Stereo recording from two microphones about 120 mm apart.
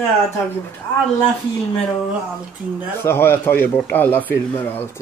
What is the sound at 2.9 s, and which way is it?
Speech, 20° left (ahead or behind).